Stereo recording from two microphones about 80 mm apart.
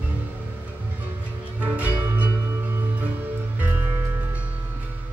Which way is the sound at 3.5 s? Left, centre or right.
Right.